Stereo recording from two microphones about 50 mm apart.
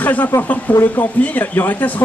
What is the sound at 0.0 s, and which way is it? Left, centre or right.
Speech, left.